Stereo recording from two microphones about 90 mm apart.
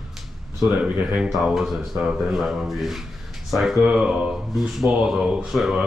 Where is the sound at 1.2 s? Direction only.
5° right (ahead or behind).